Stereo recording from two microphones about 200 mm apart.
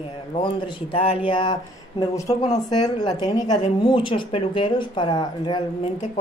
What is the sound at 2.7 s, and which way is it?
Speech, 20° left (ahead or behind).